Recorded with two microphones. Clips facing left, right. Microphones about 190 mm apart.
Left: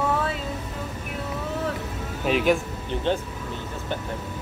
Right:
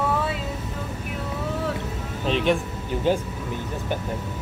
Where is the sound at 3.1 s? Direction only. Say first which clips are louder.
Right 3 dB; 10° right (ahead or behind).